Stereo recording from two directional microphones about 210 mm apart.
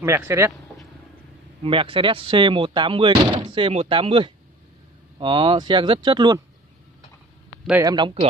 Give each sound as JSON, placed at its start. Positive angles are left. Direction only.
{"t": 0.0, "sound": "speech", "side_deg": -10}
{"t": 1.6, "sound": "speech", "side_deg": -25}
{"t": 7.8, "sound": "speech", "side_deg": -20}